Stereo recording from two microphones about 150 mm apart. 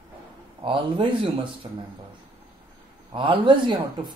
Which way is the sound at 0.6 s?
35° right (ahead or behind).